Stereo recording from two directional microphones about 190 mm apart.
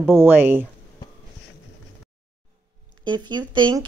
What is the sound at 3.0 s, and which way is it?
Speech, 25° right (ahead or behind).